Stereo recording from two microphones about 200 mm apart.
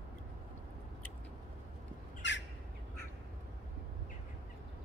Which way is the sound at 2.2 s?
65° left (ahead or behind).